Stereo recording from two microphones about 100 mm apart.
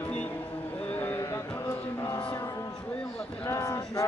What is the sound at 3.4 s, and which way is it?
Speech, 30° left (ahead or behind).